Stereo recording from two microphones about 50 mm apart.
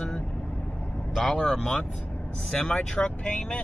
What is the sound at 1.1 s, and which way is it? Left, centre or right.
Speech, centre.